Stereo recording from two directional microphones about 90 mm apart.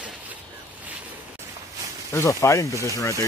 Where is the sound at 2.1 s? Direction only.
35° left (ahead or behind).